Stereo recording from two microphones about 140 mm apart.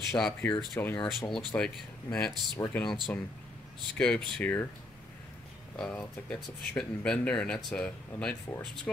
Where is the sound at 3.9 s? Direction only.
10° left (ahead or behind).